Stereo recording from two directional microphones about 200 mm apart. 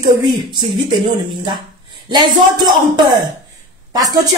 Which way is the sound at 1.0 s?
25° right (ahead or behind).